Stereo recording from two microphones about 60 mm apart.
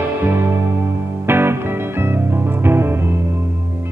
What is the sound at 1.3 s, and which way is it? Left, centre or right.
Music, right.